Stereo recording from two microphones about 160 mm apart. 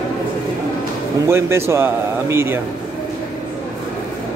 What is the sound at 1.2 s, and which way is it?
Speech, 15° right (ahead or behind).